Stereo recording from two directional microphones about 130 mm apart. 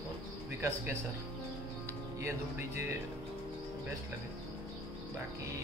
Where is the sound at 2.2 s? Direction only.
20° right (ahead or behind).